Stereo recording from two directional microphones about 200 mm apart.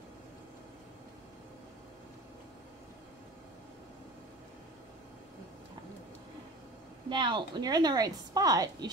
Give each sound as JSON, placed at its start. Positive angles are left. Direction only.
{"t": 7.1, "sound": "a woman's voice", "side_deg": -25}